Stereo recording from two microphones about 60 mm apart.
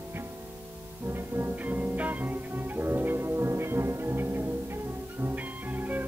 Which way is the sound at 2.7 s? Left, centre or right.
Right.